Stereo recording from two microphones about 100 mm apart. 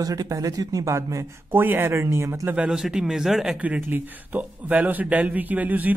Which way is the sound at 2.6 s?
5° right (ahead or behind).